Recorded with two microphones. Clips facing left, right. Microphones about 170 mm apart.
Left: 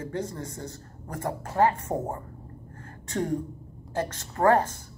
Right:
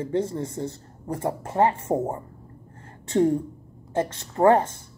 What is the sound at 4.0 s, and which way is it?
Speech, 20° right (ahead or behind).